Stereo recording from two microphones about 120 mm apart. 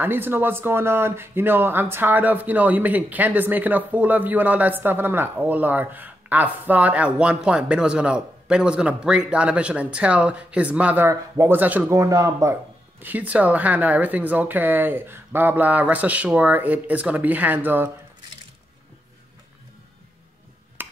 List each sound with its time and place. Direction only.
0.0 s speech: 15° right (ahead or behind)
11.9 s a man's voice: 25° right (ahead or behind)
13.0 s speech: 15° right (ahead or behind)
20.8 s tick-tock: 15° right (ahead or behind)